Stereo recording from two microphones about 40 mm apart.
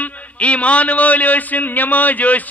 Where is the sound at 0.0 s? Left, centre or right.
Left.